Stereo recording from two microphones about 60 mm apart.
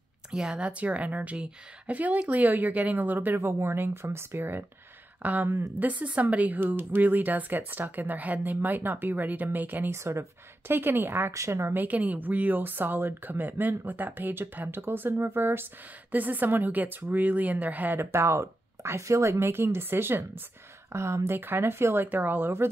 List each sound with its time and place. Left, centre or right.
0.3 s a woman's voice: centre; by 3.3 s right
3.3 s speech: right
5.2 s a woman's voice: right
9.8 s speech: right
11.3 s speech: right
11.7 s speech: right
16.1 s a woman's voice: right
18.1 s speech: right
19.3 s speech: right
20.9 s speech: right
21.4 s speech: right